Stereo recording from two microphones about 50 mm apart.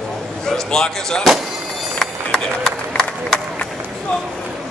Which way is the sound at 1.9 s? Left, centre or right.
Centre.